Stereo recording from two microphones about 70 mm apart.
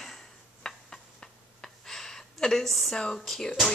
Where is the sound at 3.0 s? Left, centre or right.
Centre.